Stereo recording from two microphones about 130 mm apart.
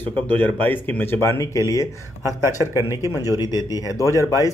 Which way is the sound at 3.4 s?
30° left (ahead or behind).